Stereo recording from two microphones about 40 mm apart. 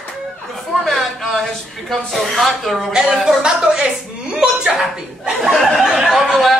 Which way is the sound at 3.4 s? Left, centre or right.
Centre.